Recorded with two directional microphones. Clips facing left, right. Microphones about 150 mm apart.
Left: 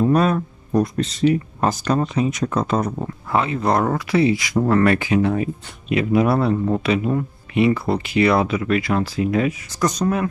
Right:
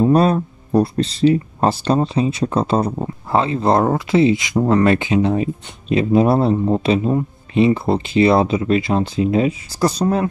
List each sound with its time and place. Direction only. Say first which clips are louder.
0.0 s speech: right 3 dB; 30° right (ahead or behind)